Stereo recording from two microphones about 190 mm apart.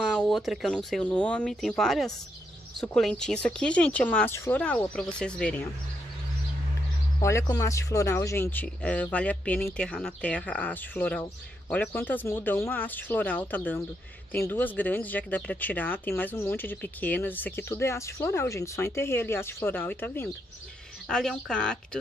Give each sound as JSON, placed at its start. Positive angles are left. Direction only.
{"t": 0.0, "sound": "speech", "side_deg": 5}
{"t": 7.2, "sound": "speech", "side_deg": 15}